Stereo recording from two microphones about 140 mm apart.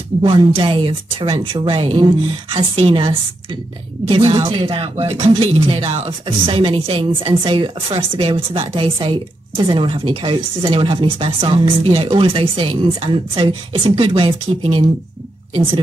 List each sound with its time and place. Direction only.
0.2 s speech: 35° right (ahead or behind)